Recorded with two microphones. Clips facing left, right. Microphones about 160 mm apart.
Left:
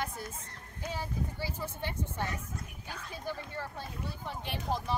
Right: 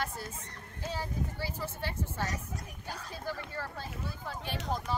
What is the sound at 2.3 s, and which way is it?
Speech, 40° right (ahead or behind).